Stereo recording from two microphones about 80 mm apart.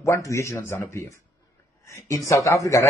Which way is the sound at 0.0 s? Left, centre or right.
Left.